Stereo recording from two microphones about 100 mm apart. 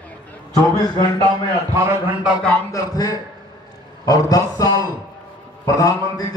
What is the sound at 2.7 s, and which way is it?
A man's voice, 35° left (ahead or behind).